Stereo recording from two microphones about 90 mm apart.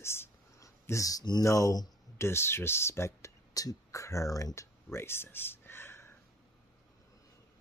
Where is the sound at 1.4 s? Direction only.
40° left (ahead or behind).